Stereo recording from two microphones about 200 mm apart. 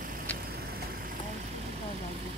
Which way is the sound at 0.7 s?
45° right (ahead or behind).